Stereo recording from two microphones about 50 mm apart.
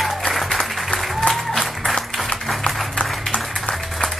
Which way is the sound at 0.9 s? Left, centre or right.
Centre.